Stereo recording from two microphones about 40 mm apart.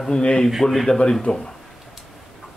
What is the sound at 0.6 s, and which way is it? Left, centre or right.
Speech, centre.